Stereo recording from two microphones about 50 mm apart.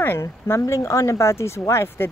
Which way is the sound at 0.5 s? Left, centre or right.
Left.